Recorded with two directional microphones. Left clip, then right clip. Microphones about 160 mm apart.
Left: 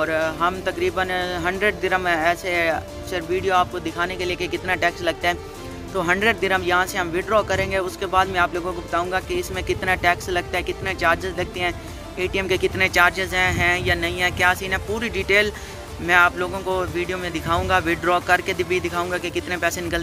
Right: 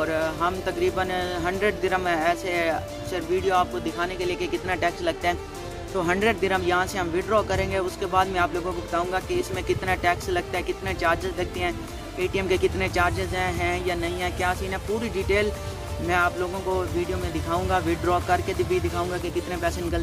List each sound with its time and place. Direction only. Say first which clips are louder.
0.0 s speech: left 4 dB; centre (ahead or behind)